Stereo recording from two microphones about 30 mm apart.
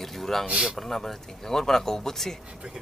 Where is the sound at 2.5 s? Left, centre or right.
Right.